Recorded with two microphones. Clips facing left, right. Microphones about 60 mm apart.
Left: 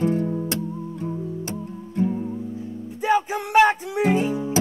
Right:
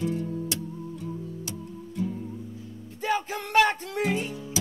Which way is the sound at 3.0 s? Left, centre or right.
Centre.